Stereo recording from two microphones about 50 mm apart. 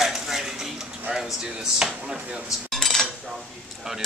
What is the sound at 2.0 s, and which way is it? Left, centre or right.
Speech, centre.